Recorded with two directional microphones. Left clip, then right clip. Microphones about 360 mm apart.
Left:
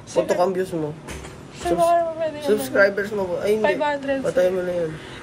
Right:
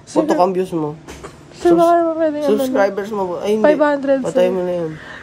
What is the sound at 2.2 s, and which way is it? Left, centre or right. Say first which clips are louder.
A woman's voice: right 6 dB; right.